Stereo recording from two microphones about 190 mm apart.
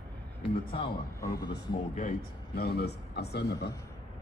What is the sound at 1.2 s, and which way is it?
Speech, 20° left (ahead or behind).